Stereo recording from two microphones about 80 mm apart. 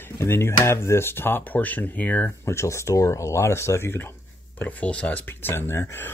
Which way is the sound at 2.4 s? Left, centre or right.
Left.